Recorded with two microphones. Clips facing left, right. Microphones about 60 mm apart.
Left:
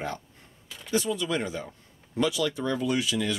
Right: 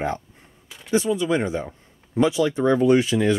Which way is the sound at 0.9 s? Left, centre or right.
Right.